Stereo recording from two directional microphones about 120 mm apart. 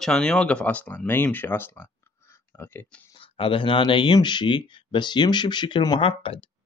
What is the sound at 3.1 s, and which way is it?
Speech, 50° left (ahead or behind).